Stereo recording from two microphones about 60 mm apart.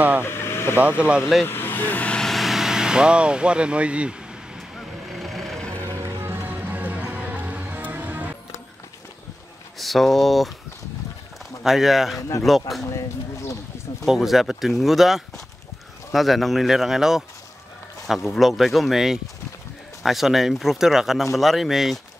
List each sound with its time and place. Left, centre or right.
0.2 s vehicle: left
0.7 s speech: right
1.4 s speech: left
2.2 s speech: centre
4.6 s vehicle: centre
6.2 s music: right
6.6 s music: right
9.8 s speech: centre
11.6 s speech: centre
12.9 s speech: left
14.0 s speech: centre